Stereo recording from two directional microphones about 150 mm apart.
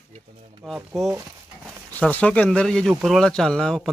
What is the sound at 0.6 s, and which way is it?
Speech, 5° left (ahead or behind).